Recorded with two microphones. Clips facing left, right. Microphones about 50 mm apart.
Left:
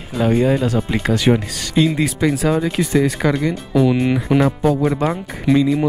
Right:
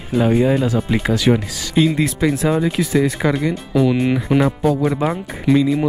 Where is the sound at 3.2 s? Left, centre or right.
Centre.